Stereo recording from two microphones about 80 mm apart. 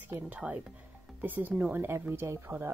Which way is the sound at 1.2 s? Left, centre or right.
Right.